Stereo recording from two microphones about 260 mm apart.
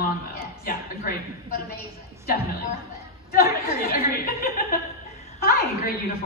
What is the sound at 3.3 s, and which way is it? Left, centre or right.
A woman's voice, left.